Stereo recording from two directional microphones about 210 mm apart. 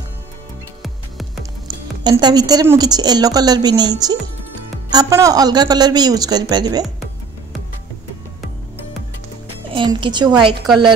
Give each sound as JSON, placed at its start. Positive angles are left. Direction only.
{"t": 1.7, "sound": "a woman's voice", "side_deg": -20}
{"t": 4.9, "sound": "a woman's voice", "side_deg": -15}
{"t": 9.7, "sound": "a woman's voice", "side_deg": -25}